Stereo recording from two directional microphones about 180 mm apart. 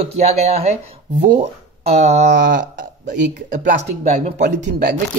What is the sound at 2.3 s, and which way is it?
Speech, 70° right (ahead or behind).